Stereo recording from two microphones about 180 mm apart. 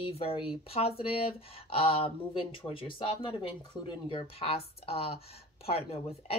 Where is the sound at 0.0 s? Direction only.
30° left (ahead or behind).